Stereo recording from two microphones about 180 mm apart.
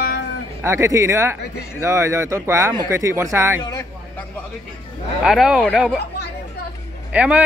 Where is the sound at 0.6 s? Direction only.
15° right (ahead or behind).